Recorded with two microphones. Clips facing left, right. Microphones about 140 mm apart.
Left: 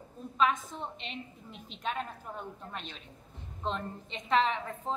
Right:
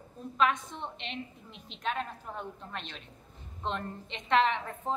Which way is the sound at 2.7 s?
5° left (ahead or behind).